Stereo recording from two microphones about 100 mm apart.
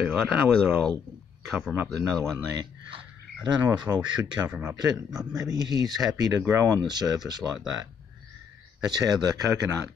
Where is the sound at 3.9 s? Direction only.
20° right (ahead or behind); by 5.5 s centre (ahead or behind).